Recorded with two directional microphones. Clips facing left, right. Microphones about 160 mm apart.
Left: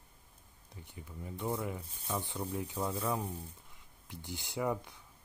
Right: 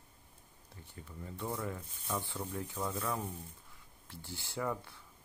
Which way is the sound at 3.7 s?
15° left (ahead or behind).